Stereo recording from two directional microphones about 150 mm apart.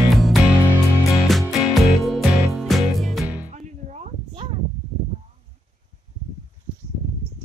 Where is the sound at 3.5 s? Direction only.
50° right (ahead or behind).